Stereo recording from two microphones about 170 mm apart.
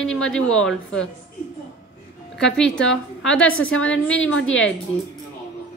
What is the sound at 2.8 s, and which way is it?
Speech, 90° left.